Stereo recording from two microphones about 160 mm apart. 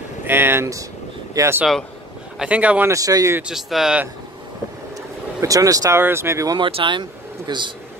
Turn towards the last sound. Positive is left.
turn(degrees=-30)  # may be behind; listen again after turning